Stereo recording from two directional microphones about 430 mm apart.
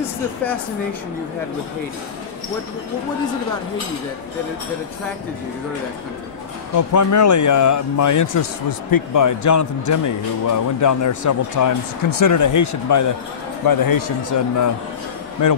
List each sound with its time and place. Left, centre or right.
6.8 s a man's voice: left